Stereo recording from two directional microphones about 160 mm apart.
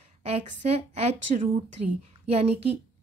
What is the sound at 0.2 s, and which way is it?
Speech, 40° right (ahead or behind).